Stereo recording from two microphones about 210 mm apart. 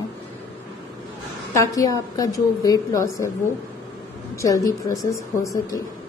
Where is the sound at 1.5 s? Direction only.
15° left (ahead or behind).